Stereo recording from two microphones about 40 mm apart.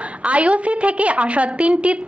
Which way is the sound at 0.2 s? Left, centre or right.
Right.